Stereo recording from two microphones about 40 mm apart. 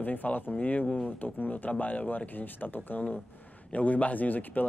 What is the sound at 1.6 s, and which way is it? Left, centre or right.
Speech, left.